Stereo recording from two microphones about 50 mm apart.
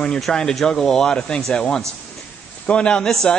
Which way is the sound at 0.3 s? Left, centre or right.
Centre.